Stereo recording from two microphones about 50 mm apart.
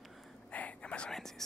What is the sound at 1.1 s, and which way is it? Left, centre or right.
Speech, centre.